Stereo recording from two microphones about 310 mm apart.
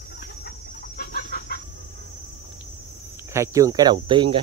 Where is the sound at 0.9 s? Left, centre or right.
Left.